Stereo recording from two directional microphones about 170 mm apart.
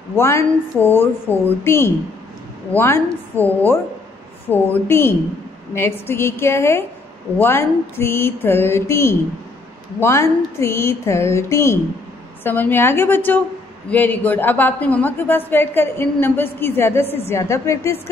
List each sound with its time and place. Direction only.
0.1 s a woman's voice: 15° left (ahead or behind)
1.3 s a woman's voice: 15° right (ahead or behind)
1.6 s a woman's voice: 15° left (ahead or behind)